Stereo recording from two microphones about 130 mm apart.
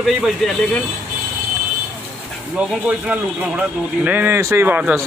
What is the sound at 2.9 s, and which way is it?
A man's voice, 10° right (ahead or behind).